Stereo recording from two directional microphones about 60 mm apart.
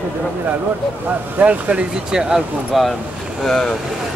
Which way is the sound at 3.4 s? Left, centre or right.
Centre.